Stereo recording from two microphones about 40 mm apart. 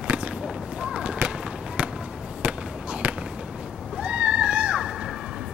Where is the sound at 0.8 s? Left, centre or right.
Right.